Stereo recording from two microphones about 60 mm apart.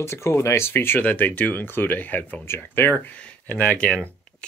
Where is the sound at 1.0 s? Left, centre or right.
Left.